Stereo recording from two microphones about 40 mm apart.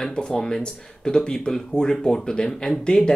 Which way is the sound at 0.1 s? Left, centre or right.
Left.